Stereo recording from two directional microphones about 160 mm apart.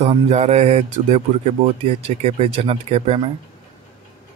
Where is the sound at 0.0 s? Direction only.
40° right (ahead or behind).